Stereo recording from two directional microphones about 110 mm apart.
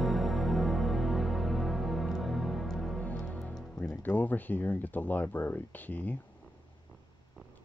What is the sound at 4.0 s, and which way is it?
Speech, 15° left (ahead or behind).